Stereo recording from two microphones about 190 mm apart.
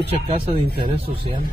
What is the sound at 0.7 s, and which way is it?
Speech, 50° right (ahead or behind).